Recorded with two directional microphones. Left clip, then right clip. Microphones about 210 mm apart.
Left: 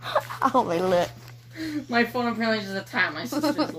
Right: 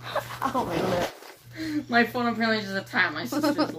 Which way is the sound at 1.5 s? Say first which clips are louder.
Right 1 dB; 10° left (ahead or behind).